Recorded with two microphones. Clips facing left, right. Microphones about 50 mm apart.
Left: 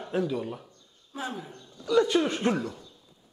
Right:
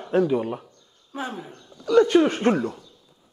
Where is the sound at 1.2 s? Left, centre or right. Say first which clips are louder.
Right 3 dB; centre.